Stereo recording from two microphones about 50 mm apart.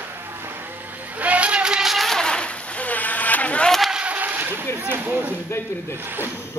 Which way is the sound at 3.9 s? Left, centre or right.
Right.